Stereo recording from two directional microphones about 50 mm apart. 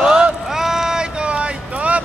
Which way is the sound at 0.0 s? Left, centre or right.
Centre.